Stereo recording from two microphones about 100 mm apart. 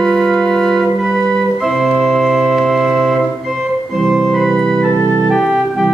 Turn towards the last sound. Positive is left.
turn(degrees=-5)  # may be behind; listen again after turning